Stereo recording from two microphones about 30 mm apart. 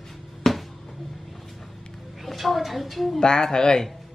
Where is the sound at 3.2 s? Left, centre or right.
Left.